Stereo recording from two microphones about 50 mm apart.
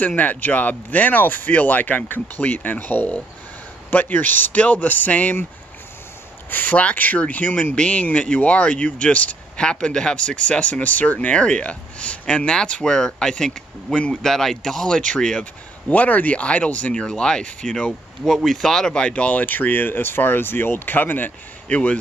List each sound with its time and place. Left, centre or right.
0.0 s speech: left
6.5 s speech: left; by 15.4 s centre
15.9 s speech: left
16.9 s speech: centre
18.2 s speech: centre; by 21.3 s left
21.6 s speech: left